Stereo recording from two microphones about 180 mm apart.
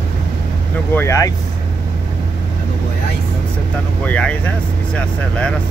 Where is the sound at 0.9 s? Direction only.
15° left (ahead or behind).